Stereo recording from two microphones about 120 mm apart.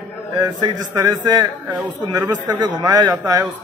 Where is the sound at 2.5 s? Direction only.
35° right (ahead or behind).